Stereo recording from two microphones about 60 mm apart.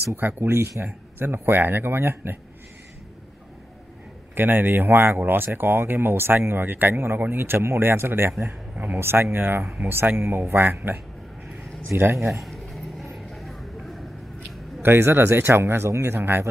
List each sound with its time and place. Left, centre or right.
0.4 s speech: right
4.4 s speech: right
8.7 s speech: right
9.0 s speech: right
12.0 s speech: right
12.4 s a sound: centre
14.8 s speech: right